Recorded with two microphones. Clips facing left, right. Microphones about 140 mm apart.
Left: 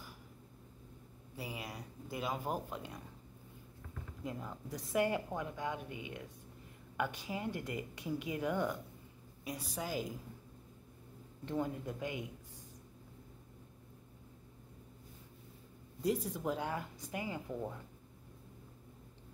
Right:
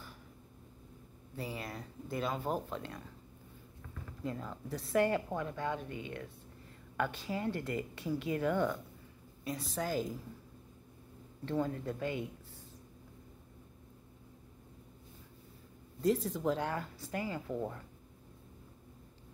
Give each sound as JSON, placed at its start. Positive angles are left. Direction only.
{"t": 1.3, "sound": "a woman's voice", "side_deg": 10}
{"t": 4.2, "sound": "a woman's voice", "side_deg": 15}
{"t": 11.4, "sound": "a woman's voice", "side_deg": 15}
{"t": 16.0, "sound": "a woman's voice", "side_deg": 10}